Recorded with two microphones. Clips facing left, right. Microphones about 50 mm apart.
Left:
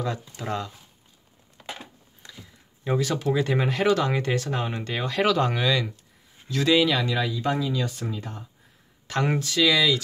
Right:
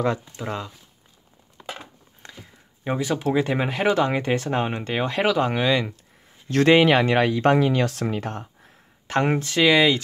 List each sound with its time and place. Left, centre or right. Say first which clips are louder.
0.4 s speech: even; centre
2.2 s a sound: right 3 dB; right
2.8 s speech: right 1 dB; right
6.5 s speech: right 5 dB; right
9.0 s speech: right 4 dB; right